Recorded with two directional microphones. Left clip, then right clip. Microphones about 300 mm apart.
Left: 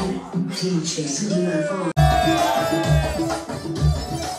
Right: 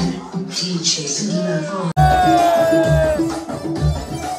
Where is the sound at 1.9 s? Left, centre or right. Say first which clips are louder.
Right 6 dB; right.